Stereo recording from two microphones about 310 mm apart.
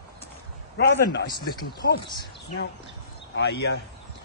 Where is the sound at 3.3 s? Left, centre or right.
Left.